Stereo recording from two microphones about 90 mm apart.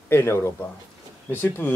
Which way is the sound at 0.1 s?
30° left (ahead or behind).